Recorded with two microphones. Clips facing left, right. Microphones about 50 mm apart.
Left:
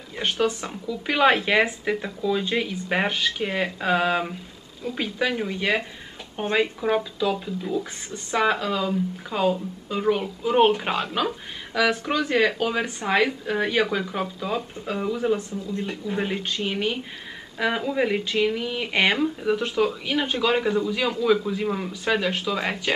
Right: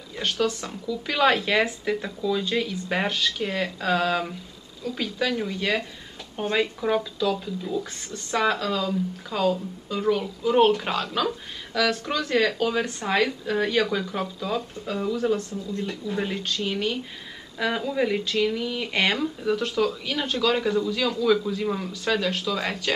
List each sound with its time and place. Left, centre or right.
0.1 s speech: left